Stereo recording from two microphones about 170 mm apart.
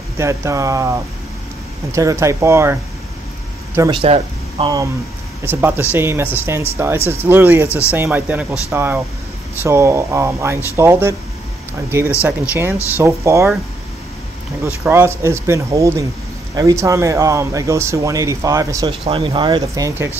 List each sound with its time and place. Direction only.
0.2 s speech: 15° right (ahead or behind)
3.9 s speech: 35° right (ahead or behind)
5.4 s speech: 15° right (ahead or behind)
7.6 s speech: 15° left (ahead or behind)
7.9 s speech: 10° right (ahead or behind)
12.2 s speech: 10° right (ahead or behind)
14.6 s speech: 15° right (ahead or behind)
18.9 s speech: 30° right (ahead or behind)